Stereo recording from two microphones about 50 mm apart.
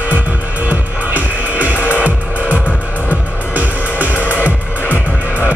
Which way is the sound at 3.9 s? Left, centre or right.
Left.